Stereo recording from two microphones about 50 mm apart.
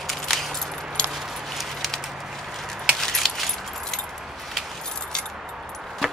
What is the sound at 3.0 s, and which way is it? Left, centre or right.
Keys jangling, centre.